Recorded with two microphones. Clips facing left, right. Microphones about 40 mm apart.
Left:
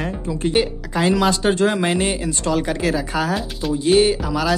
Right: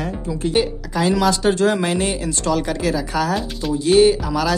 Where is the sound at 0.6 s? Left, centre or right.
Centre.